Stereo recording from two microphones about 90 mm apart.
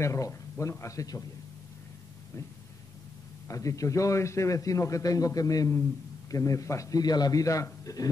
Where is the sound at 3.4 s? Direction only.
40° left (ahead or behind).